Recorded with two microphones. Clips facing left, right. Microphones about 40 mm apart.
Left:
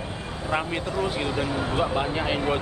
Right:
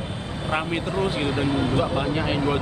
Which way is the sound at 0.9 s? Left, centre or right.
Right.